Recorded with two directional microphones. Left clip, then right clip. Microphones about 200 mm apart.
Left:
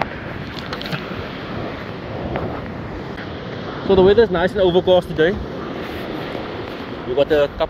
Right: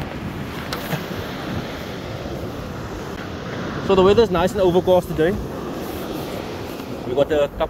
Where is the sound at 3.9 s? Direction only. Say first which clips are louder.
Left 2 dB; 10° right (ahead or behind).